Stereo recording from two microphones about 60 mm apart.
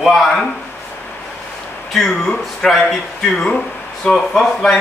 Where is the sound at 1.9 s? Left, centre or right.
Centre.